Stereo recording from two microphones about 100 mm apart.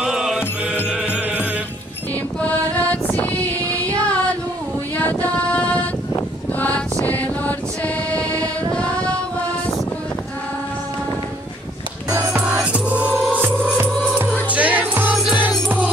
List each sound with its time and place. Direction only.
0.0 s music: 5° right (ahead or behind)
2.4 s mantra: 15° left (ahead or behind)
3.9 s female singing: 10° left (ahead or behind)
4.9 s a sound: 15° left (ahead or behind)
7.1 s mantra: 15° left (ahead or behind)
8.7 s a sound: 10° left (ahead or behind)
12.4 s music: 10° right (ahead or behind)